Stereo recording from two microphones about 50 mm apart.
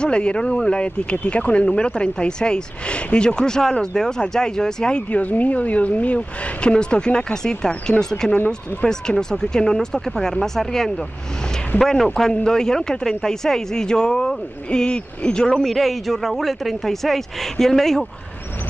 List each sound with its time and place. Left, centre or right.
0.0 s speech: centre
5.1 s speech: left; by 18.0 s centre